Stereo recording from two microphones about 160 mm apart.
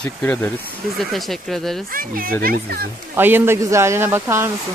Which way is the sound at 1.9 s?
60° right (ahead or behind).